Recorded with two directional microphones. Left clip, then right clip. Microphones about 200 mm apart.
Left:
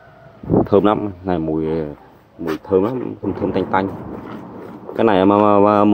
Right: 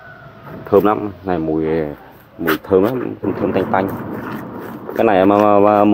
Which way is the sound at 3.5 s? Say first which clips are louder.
Right 1 dB; 35° left (ahead or behind).